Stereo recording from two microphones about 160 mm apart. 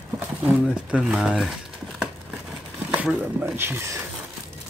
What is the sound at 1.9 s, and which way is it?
Crumpling, 5° right (ahead or behind).